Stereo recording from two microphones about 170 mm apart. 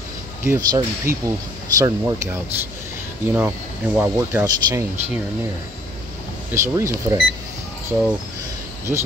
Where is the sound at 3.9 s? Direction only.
10° right (ahead or behind).